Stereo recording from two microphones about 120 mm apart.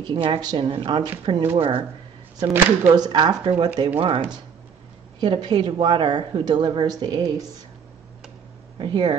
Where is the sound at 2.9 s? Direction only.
40° right (ahead or behind).